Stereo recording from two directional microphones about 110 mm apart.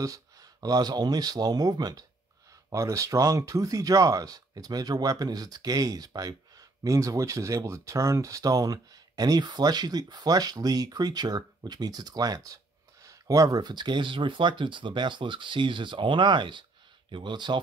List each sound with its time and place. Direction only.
0.0 s speech: 30° right (ahead or behind)